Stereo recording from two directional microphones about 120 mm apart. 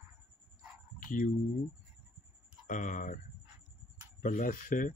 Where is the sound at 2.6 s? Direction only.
90° left.